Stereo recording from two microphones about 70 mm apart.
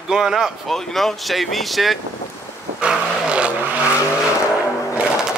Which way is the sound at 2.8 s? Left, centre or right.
Centre.